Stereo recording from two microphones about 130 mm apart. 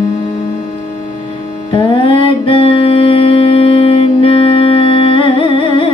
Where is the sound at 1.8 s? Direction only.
40° left (ahead or behind).